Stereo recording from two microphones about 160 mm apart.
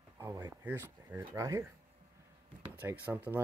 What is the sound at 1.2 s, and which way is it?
Speech, 25° right (ahead or behind).